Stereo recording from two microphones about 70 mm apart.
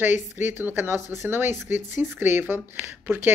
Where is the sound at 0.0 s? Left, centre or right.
Right.